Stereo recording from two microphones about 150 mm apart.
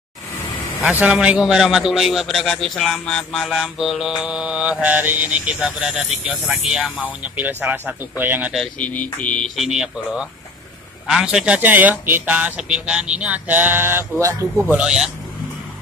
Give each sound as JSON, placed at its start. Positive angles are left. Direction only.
{"t": 0.8, "sound": "a man's voice", "side_deg": -5}
{"t": 8.5, "sound": "a man's voice", "side_deg": 10}